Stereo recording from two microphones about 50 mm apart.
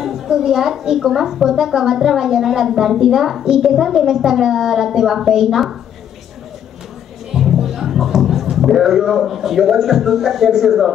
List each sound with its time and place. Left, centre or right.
0.0 s a woman's voice: centre
7.3 s speech: centre